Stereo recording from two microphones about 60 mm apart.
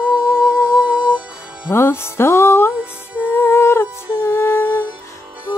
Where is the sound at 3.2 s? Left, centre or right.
Left.